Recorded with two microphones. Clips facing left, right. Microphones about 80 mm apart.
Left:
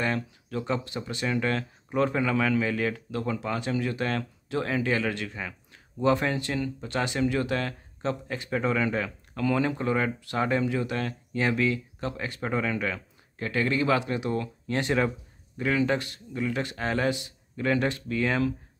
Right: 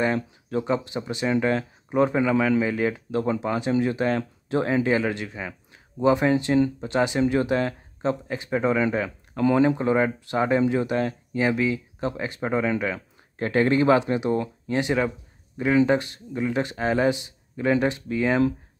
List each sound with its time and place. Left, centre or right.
0.5 s speech: right
13.4 s speech: right
14.7 s a sound: centre
15.6 s speech: centre